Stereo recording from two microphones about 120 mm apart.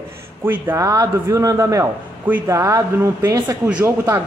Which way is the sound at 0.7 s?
30° right (ahead or behind).